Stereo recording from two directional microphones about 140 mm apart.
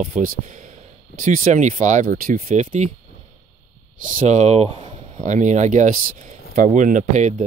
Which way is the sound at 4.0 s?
60° right (ahead or behind).